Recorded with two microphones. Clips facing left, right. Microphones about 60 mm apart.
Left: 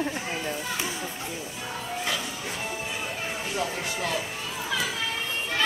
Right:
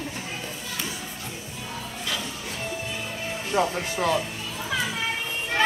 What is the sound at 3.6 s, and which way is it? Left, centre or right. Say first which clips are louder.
Speech: right 7 dB; right.